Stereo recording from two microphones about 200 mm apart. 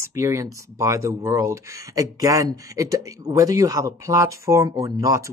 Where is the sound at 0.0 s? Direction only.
15° right (ahead or behind).